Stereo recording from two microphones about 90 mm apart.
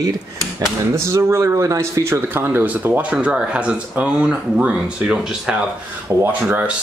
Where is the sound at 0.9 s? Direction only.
30° right (ahead or behind); by 5.7 s 5° right (ahead or behind).